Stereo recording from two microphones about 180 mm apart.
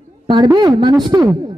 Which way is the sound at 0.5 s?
25° right (ahead or behind).